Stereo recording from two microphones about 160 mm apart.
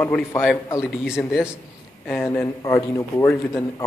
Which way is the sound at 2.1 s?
15° left (ahead or behind).